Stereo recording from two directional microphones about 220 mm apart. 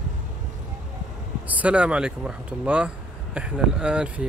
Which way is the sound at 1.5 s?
5° right (ahead or behind).